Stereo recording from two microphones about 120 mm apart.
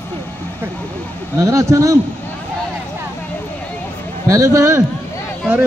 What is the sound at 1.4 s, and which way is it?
Speech, 25° right (ahead or behind).